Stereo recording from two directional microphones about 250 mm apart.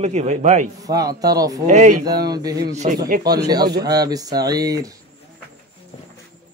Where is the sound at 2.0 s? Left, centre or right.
Centre.